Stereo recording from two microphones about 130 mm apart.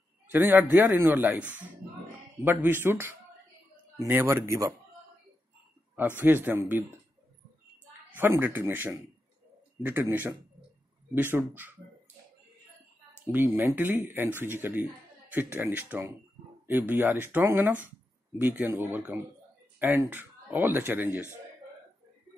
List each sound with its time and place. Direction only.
0.3 s speech: 15° right (ahead or behind)
5.9 s speech: 15° right (ahead or behind)
8.1 s speech: 15° right (ahead or behind)
13.3 s speech: 15° right (ahead or behind)